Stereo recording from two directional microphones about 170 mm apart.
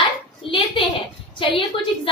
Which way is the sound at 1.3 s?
30° left (ahead or behind).